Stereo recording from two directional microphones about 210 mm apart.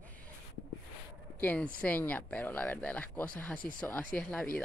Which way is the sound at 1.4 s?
5° left (ahead or behind).